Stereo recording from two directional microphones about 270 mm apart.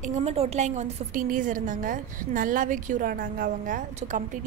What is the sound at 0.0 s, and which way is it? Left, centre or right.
A woman's voice, right.